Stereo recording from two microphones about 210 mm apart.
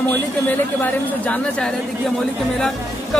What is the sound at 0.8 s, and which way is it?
Speech, 5° left (ahead or behind).